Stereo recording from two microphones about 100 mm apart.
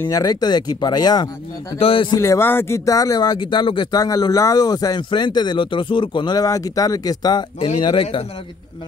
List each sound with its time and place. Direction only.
0.1 s speech: 40° left (ahead or behind)
1.8 s a man's voice: 65° left (ahead or behind)
2.1 s speech: 30° left (ahead or behind)
2.8 s speech: 35° left (ahead or behind); by 3.9 s 55° left (ahead or behind)
3.9 s speech: 40° left (ahead or behind)
7.8 s a man's voice: 60° left (ahead or behind)